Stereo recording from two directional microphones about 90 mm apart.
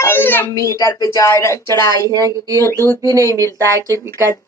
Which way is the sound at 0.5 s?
35° left (ahead or behind).